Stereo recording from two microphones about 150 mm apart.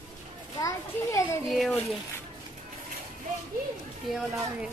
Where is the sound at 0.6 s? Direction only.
20° left (ahead or behind).